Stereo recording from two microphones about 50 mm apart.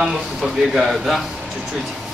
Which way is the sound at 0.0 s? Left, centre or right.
Centre.